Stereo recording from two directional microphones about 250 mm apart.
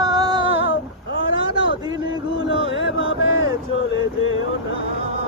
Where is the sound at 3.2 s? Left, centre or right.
Right.